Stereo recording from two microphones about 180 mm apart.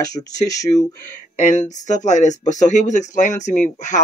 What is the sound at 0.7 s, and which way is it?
Speech, 30° left (ahead or behind).